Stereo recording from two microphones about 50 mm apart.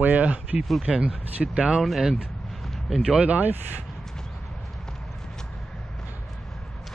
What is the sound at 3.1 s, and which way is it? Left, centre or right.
Speech, right.